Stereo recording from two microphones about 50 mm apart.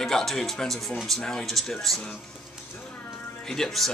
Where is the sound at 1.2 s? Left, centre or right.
Centre.